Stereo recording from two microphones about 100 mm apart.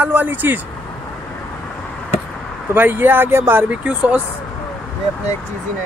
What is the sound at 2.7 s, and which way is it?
Speech, 20° right (ahead or behind).